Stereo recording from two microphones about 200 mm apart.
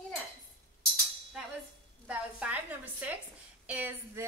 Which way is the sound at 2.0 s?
5° right (ahead or behind).